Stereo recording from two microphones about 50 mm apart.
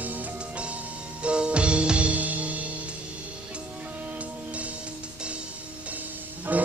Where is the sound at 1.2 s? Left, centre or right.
Right.